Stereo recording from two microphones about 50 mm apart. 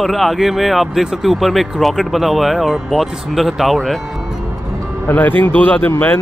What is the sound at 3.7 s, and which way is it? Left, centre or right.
Speech, centre.